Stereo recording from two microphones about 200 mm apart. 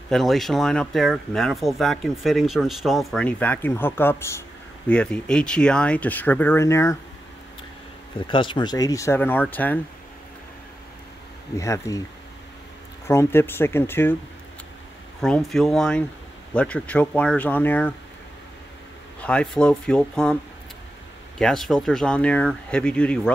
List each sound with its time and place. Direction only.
0.1 s speech: centre (ahead or behind)
8.3 s speech: 25° left (ahead or behind); by 9.8 s 10° left (ahead or behind)
11.5 s speech: 15° left (ahead or behind)
13.0 s speech: 15° left (ahead or behind)
15.2 s speech: 5° left (ahead or behind)
19.2 s speech: 5° left (ahead or behind)
21.4 s speech: centre (ahead or behind)